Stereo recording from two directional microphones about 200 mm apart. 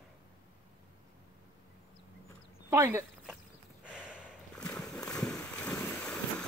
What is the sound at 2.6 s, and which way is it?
Speech, 10° right (ahead or behind).